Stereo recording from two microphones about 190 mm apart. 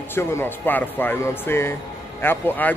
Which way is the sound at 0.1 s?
15° left (ahead or behind).